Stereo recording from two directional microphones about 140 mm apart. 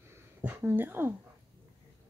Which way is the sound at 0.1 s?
20° right (ahead or behind).